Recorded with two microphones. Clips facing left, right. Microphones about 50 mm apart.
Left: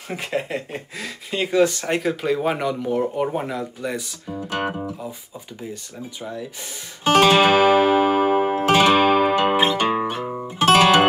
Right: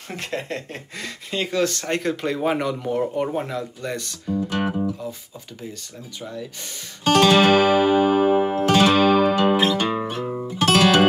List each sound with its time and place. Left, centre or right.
0.1 s speech: centre
4.4 s music: left
4.6 s speech: centre
7.1 s music: centre